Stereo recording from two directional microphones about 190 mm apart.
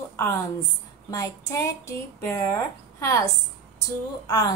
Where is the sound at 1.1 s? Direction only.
15° left (ahead or behind).